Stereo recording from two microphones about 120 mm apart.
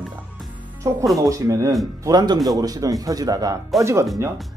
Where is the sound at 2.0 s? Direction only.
35° right (ahead or behind).